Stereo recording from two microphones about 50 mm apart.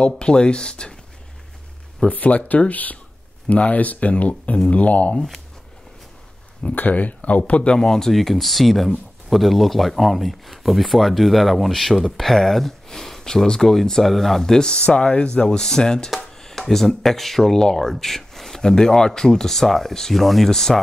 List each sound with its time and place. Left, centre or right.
0.2 s speech: centre
2.0 s speech: left
6.7 s speech: left
7.6 s speech: centre